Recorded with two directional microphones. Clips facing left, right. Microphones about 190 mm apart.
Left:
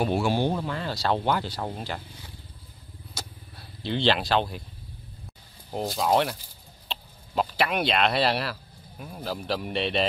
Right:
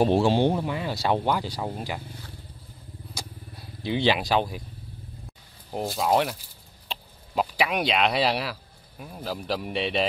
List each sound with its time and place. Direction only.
0.0 s speech: 30° right (ahead or behind); by 2.0 s 5° right (ahead or behind)
3.2 s vehicle: 10° right (ahead or behind)
3.8 s speech: 10° right (ahead or behind)
5.7 s speech: 5° right (ahead or behind)